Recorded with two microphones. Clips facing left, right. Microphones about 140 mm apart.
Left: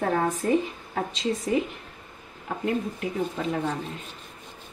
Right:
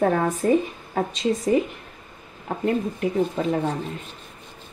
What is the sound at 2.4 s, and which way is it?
Speech, 45° right (ahead or behind).